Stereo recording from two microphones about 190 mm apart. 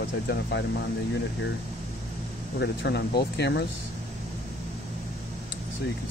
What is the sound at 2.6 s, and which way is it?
Speech, 60° left (ahead or behind).